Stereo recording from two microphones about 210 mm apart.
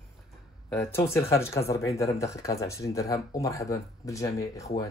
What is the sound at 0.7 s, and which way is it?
Speech, 10° left (ahead or behind).